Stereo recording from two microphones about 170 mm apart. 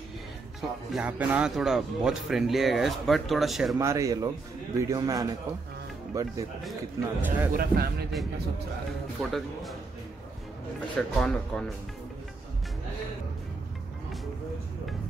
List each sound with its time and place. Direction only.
0.6 s speech: 5° right (ahead or behind)
3.7 s a man's voice: 20° right (ahead or behind)
7.5 s speech: 65° right (ahead or behind)
9.3 s speech: centre (ahead or behind)
11.0 s speech: 5° left (ahead or behind)